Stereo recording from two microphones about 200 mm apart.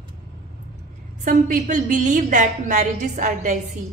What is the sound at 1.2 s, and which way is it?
A woman's voice, 40° right (ahead or behind).